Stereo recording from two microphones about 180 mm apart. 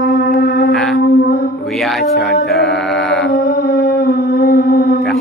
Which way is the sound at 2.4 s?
Centre (ahead or behind).